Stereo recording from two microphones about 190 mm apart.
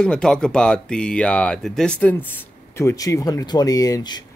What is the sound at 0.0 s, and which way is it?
Speech, 5° left (ahead or behind).